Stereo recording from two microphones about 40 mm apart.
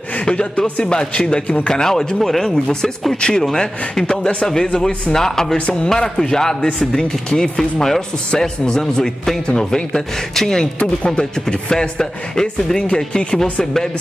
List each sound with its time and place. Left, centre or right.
0.2 s speech: left